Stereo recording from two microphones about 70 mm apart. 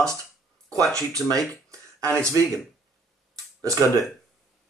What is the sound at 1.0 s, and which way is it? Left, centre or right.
Speech, right.